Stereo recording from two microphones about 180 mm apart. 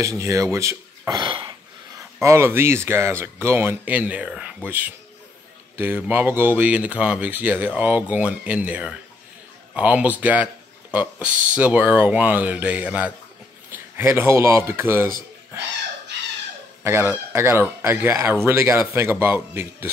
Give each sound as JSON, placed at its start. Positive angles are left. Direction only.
{"t": 0.0, "sound": "speech", "side_deg": -15}
{"t": 2.1, "sound": "speech", "side_deg": -15}
{"t": 16.8, "sound": "speech", "side_deg": -15}